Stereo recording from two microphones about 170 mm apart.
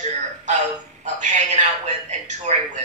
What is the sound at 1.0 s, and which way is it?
A man's voice, 45° right (ahead or behind).